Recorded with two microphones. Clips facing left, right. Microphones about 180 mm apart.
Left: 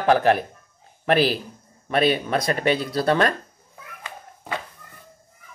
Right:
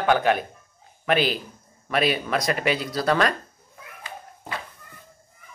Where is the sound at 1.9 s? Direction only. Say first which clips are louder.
Left 3 dB; 30° left (ahead or behind).